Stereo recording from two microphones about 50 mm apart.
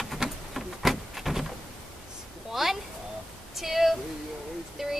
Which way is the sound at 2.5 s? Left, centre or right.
Centre.